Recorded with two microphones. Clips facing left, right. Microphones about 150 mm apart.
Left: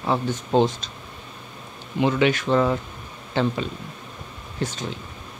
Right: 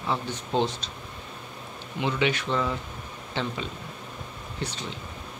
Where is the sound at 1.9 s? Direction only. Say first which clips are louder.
Left 6 dB; 50° left (ahead or behind).